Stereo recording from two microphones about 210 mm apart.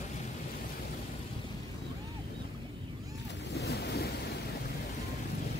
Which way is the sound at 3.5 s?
50° left (ahead or behind).